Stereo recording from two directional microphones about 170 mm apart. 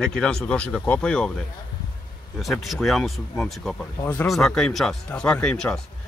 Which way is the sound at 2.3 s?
Centre (ahead or behind).